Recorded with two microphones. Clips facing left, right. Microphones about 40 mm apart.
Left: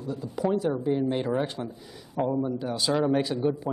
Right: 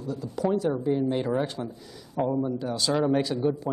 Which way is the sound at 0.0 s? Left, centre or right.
Centre.